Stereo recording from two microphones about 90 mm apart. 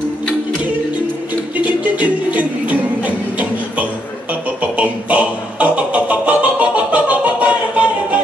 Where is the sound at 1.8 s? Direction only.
15° right (ahead or behind).